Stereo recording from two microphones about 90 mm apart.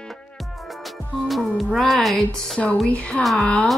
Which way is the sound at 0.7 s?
Centre (ahead or behind).